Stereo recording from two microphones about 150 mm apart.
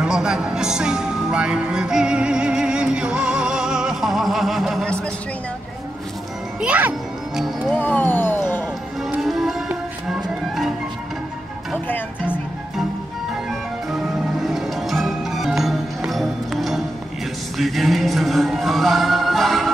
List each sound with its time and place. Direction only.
0.0 s speech: 5° right (ahead or behind)
6.6 s a child's voice: 10° right (ahead or behind)
7.7 s music: 10° left (ahead or behind)
9.1 s music: centre (ahead or behind)
13.3 s music: centre (ahead or behind)